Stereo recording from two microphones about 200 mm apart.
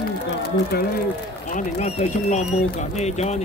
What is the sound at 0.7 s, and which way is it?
Speech, 50° left (ahead or behind).